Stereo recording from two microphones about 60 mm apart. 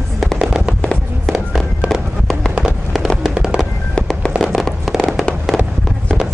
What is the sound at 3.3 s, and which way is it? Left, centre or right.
Fireworks, centre.